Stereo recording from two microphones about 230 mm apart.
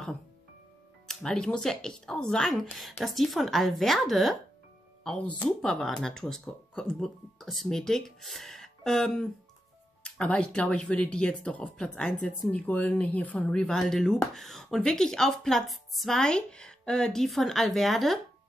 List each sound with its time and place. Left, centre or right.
1.0 s speech: centre